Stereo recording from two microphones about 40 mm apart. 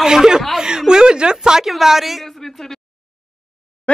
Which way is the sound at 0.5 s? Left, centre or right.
Centre.